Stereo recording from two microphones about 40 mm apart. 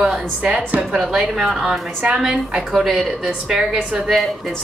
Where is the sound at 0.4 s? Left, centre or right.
Right.